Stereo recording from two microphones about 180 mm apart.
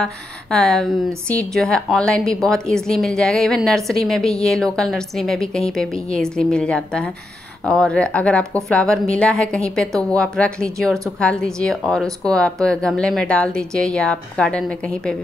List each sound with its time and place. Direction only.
0.0 s a woman's voice: 5° left (ahead or behind)